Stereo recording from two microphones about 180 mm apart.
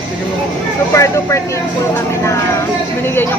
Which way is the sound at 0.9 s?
15° left (ahead or behind).